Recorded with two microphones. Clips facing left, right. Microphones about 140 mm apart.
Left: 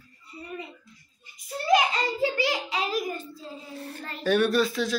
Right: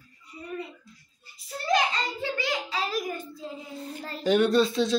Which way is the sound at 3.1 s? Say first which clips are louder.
Right 1 dB; 15° right (ahead or behind).